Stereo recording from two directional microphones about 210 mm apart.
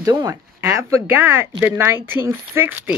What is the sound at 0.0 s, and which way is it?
Speech, 15° right (ahead or behind).